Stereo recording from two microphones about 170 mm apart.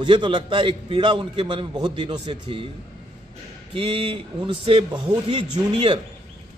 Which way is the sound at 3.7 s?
30° right (ahead or behind).